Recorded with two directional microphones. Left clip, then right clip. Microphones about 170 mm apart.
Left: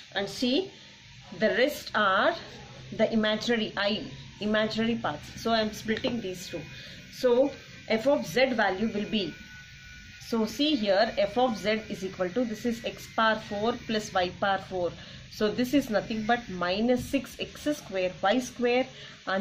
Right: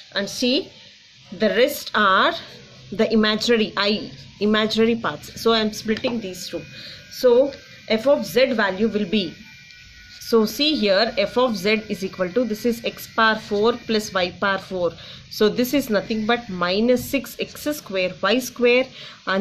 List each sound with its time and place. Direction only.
0.1 s a woman's voice: 40° right (ahead or behind)
7.2 s a woman's voice: 35° right (ahead or behind)